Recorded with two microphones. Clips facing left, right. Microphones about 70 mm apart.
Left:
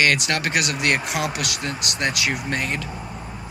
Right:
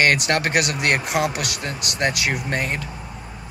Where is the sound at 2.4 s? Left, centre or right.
Right.